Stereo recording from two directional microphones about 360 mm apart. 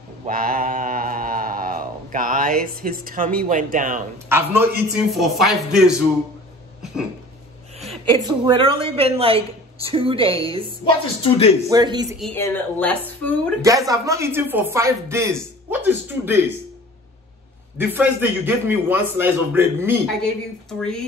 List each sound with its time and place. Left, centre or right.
0.3 s a sound: right
3.3 s speech: right
4.3 s a man's voice: centre
7.8 s a sound: centre
8.3 s speech: centre
11.2 s speech: centre
11.7 s speech: centre
12.2 s a man's voice: centre
13.6 s speech: centre
17.7 s a man's voice: centre